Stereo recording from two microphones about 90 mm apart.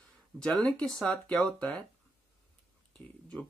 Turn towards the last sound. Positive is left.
turn(degrees=15)  # may be behind; listen again after turning